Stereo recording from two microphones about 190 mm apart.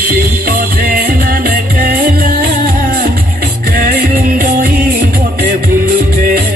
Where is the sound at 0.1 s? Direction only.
50° right (ahead or behind).